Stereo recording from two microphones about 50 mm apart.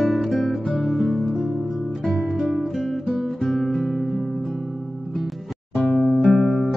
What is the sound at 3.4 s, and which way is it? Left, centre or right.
Guitar, centre.